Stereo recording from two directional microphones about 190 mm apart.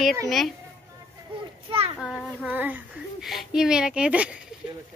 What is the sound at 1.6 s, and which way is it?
Children playing, 30° right (ahead or behind).